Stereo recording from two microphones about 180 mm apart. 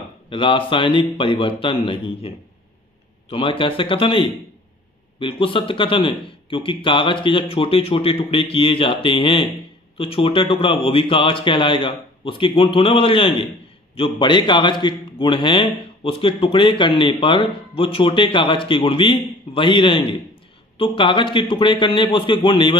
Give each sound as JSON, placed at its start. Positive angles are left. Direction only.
{"t": 0.3, "sound": "a man's voice", "side_deg": 30}